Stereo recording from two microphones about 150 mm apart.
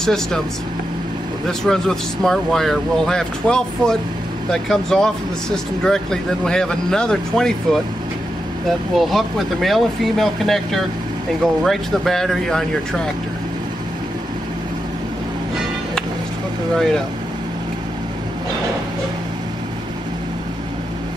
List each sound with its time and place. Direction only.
0.0 s speech: 5° left (ahead or behind)
1.6 s speech: 5° left (ahead or behind)